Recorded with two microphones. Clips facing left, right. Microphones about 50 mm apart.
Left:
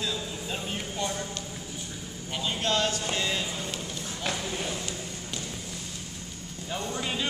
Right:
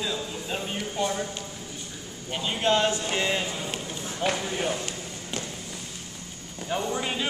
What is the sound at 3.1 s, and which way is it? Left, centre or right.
Speech, right.